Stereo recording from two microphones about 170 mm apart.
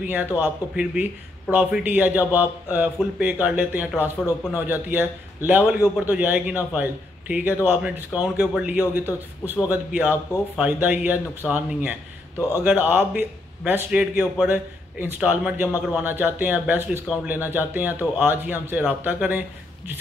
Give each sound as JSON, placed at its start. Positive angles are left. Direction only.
{"t": 0.0, "sound": "a man's voice", "side_deg": -10}